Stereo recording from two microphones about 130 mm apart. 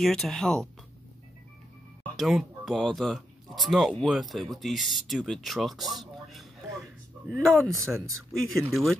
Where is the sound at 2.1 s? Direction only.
Centre (ahead or behind).